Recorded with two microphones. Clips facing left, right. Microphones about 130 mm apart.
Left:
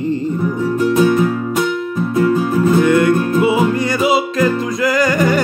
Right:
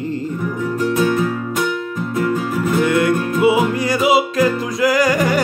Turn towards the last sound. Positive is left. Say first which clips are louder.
# left 1 dB
turn(degrees=-10)  # may be behind; listen again after turning